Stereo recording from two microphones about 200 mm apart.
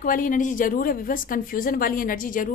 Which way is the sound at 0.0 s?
45° left (ahead or behind).